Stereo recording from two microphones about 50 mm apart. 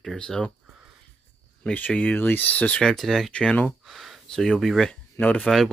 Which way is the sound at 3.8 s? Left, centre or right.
Centre.